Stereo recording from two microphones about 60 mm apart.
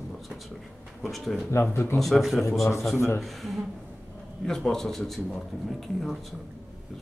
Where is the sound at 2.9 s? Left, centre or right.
Left.